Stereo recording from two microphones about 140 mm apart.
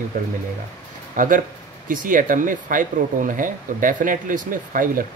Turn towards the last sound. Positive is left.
turn(degrees=-70)  # may be behind; listen again after turning